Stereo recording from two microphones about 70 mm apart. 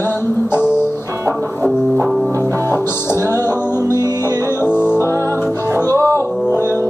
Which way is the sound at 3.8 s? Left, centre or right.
Right.